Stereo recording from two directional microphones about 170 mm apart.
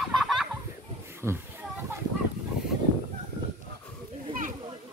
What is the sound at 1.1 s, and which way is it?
Children playing, 15° right (ahead or behind).